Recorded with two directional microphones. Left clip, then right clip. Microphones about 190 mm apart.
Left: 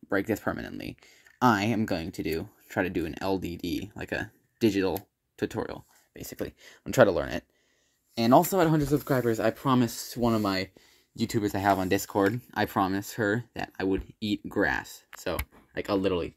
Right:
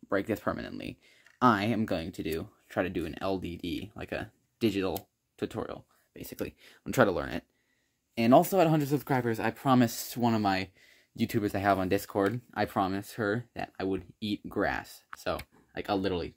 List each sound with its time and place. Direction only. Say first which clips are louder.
0.1 s speech: left 2 dB; centre (ahead or behind)
8.6 s speech: left 2 dB; 20° right (ahead or behind)
9.8 s speech: left 2 dB; 35° right (ahead or behind); by 11.5 s 20° right (ahead or behind)
11.5 s speech: left 2 dB; centre (ahead or behind)